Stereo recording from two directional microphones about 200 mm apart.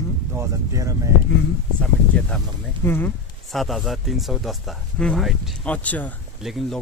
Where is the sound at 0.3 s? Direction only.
15° right (ahead or behind).